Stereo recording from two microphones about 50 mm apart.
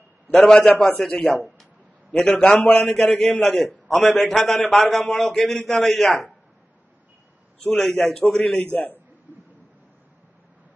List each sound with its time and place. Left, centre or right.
0.3 s a man's voice: centre
7.7 s a man's voice: centre
8.6 s a man's voice: left